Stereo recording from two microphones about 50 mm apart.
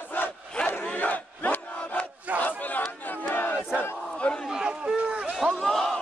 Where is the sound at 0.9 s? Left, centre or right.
Left.